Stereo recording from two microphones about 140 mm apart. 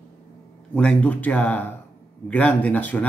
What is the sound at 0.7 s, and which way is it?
Speech, 10° left (ahead or behind).